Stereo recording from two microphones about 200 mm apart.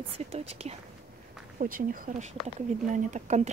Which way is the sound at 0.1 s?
30° right (ahead or behind).